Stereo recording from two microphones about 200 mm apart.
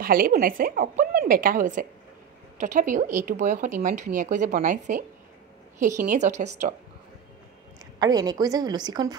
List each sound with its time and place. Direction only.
0.0 s a woman's voice: 45° right (ahead or behind)
7.8 s a woman's voice: 20° right (ahead or behind)